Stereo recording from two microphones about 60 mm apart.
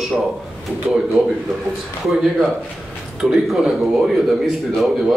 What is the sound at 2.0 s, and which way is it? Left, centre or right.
A man's voice, centre.